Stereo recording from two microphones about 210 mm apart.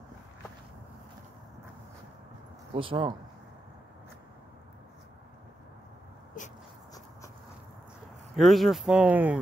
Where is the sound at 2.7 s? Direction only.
25° right (ahead or behind).